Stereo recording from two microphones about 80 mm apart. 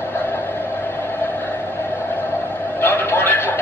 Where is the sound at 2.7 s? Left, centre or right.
Left.